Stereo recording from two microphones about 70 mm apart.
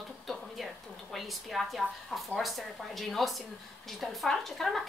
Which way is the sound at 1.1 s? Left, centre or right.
Centre.